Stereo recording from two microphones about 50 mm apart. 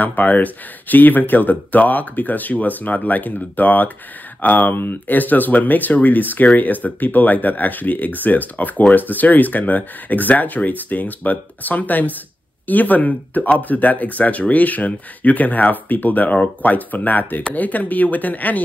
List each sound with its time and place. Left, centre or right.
0.0 s speech: left